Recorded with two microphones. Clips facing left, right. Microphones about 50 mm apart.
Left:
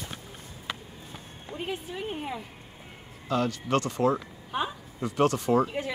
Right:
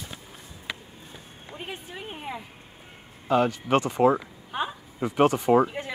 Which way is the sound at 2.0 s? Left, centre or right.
Centre.